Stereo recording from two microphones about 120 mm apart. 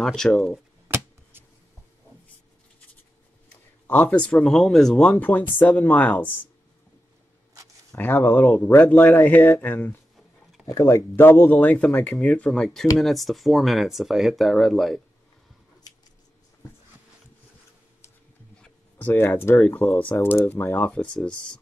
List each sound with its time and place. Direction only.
0.0 s speech: 5° left (ahead or behind)
0.8 s a sound: 20° right (ahead or behind)
3.8 s speech: 15° left (ahead or behind)
7.9 s speech: 15° left (ahead or behind); by 15.0 s centre (ahead or behind)
18.6 s speech: 15° left (ahead or behind)